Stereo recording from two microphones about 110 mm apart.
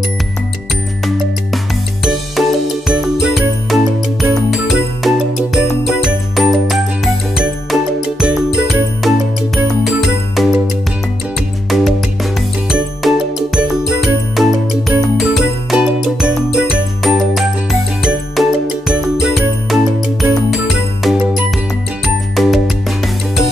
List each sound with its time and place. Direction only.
2.4 s music: centre (ahead or behind)
11.7 s music: centre (ahead or behind)